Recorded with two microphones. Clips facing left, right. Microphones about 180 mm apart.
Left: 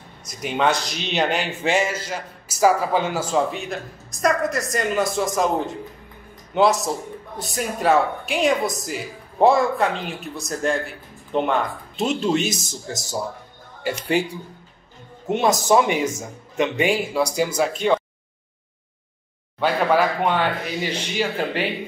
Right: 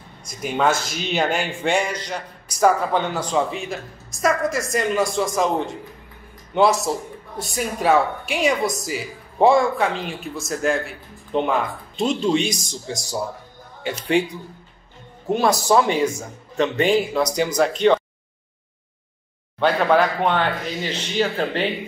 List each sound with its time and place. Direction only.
0.3 s speech: centre (ahead or behind)
15.3 s speech: 20° left (ahead or behind)
19.6 s speech: 10° left (ahead or behind)